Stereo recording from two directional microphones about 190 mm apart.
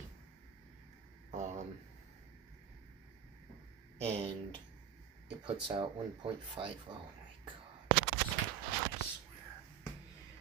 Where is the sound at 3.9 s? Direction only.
30° right (ahead or behind).